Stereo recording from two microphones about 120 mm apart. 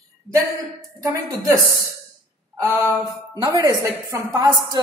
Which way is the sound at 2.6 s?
20° right (ahead or behind).